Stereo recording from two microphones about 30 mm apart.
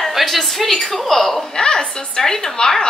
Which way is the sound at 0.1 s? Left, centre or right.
Centre.